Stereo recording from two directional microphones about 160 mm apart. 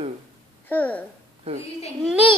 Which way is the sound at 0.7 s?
10° left (ahead or behind).